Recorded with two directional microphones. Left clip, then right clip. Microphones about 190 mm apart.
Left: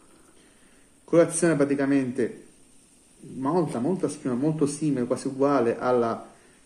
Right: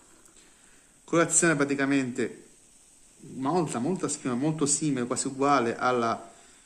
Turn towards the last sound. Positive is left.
turn(degrees=-25)  # may be behind; listen again after turning